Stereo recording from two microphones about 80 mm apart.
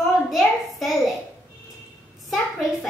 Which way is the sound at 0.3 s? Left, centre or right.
Centre.